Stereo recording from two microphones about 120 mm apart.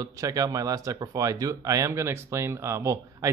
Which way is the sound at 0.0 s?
30° right (ahead or behind).